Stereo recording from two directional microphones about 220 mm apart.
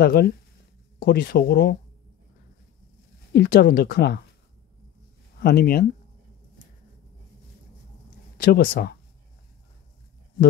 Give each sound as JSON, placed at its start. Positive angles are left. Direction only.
{"t": 0.0, "sound": "speech", "side_deg": 45}
{"t": 3.3, "sound": "speech", "side_deg": 40}
{"t": 5.4, "sound": "speech", "side_deg": 45}
{"t": 8.4, "sound": "speech", "side_deg": 45}